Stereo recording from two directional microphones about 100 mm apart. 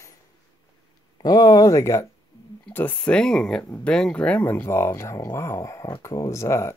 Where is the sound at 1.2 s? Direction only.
40° left (ahead or behind).